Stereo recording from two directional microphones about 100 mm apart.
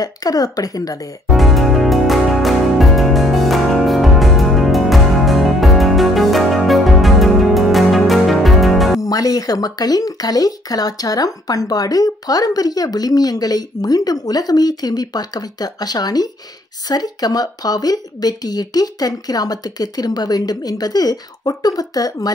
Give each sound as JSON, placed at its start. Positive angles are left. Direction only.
{"t": 0.0, "sound": "speech", "side_deg": 40}
{"t": 1.3, "sound": "music", "side_deg": 0}
{"t": 9.0, "sound": "speech", "side_deg": 35}